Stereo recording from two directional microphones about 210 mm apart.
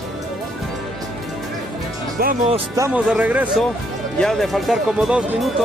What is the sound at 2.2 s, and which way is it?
Speech, 45° right (ahead or behind).